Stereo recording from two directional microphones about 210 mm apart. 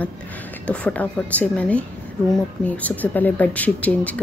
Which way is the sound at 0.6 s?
5° left (ahead or behind).